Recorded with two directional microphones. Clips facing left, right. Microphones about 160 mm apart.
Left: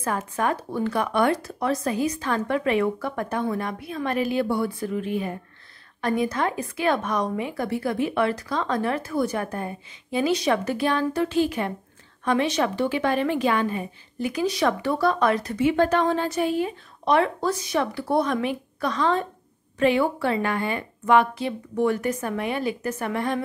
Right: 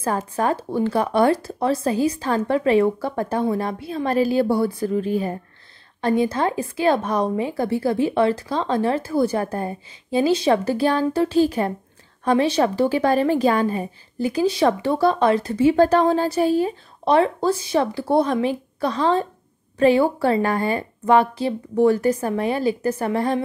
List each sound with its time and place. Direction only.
0.0 s a woman's voice: 35° right (ahead or behind)